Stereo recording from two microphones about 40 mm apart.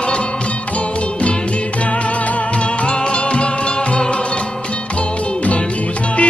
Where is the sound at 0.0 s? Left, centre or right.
Left.